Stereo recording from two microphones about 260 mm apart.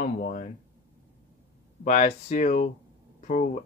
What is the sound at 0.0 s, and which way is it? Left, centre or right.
Speech, left.